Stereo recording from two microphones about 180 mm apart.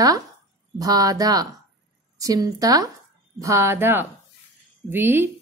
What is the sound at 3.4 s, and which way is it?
Speech, 15° right (ahead or behind).